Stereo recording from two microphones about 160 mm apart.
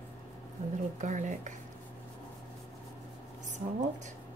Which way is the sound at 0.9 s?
50° right (ahead or behind).